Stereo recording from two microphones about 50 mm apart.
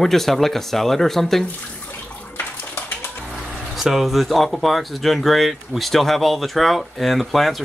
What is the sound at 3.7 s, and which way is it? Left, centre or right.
Speech, centre.